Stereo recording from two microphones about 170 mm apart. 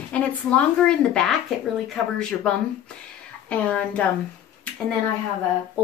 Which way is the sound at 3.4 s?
10° left (ahead or behind).